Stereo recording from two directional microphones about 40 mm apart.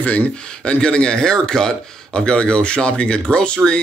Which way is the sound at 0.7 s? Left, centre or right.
Left.